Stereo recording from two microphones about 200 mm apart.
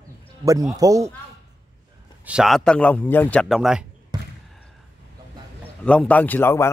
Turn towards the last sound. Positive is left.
turn(degrees=10)  # may be behind; listen again after turning